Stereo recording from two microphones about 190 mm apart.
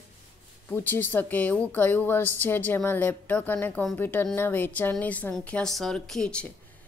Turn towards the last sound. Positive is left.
turn(degrees=5)  # may be behind; listen again after turning